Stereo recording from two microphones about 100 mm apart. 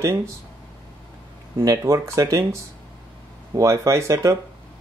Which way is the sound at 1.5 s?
35° right (ahead or behind).